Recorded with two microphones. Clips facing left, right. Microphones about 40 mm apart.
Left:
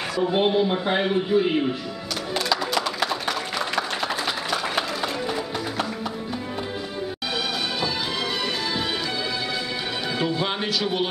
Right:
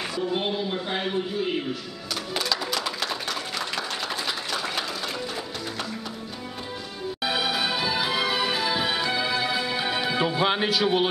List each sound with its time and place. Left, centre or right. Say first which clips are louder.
0.3 s speech: left 9 dB; left
2.3 s music: left 4 dB; centre
3.0 s a sound: left 4 dB; centre
4.5 s applause: left 4 dB; centre
7.2 s music: right 3 dB; centre